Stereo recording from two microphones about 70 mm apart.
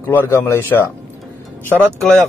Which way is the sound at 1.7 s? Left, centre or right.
Right.